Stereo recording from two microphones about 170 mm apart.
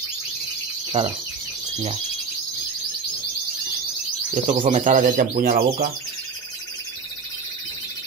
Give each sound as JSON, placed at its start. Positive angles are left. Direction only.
{"t": 1.0, "sound": "speech", "side_deg": -35}
{"t": 4.5, "sound": "speech", "side_deg": -45}